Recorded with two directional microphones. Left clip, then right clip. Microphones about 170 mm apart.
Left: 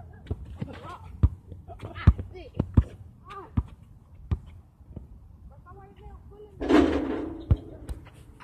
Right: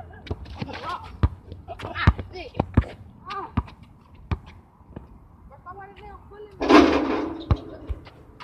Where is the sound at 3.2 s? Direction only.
15° right (ahead or behind).